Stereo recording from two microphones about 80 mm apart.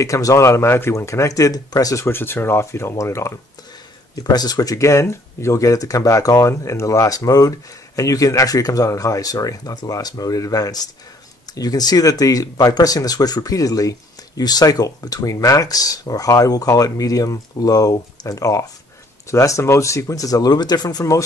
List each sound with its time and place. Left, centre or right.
0.0 s speech: left
2.0 s speech: left
4.1 s speech: left